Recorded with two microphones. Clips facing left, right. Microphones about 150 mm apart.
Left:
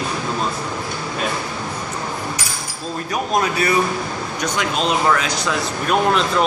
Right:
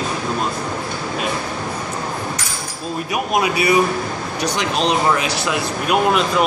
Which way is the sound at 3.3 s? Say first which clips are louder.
Right 2 dB; 10° right (ahead or behind).